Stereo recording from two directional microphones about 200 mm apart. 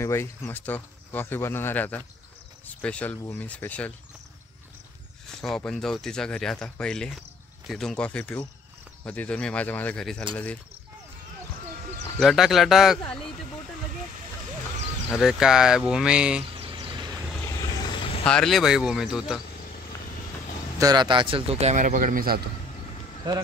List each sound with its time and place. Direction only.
0.0 s speech: 15° left (ahead or behind)
5.4 s speech: 5° left (ahead or behind)
12.2 s speech: centre (ahead or behind)
15.0 s speech: centre (ahead or behind)
16.5 s a sound: 25° right (ahead or behind)
17.3 s vehicle: 15° left (ahead or behind)
18.2 s speech: 5° left (ahead or behind)
20.8 s speech: 20° right (ahead or behind); by 22.4 s 45° right (ahead or behind)